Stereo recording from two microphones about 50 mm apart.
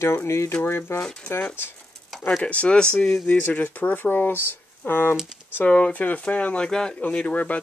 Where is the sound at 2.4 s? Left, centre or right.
Left.